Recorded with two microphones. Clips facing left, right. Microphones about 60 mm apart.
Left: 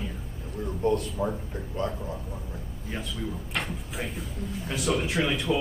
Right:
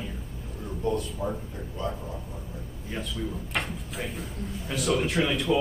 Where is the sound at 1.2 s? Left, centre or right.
Left.